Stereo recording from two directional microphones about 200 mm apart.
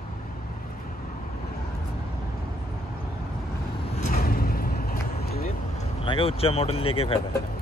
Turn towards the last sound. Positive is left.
turn(degrees=30)  # may be behind; listen again after turning